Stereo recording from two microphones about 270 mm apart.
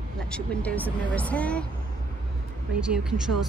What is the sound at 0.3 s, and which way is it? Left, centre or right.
A woman's voice, centre.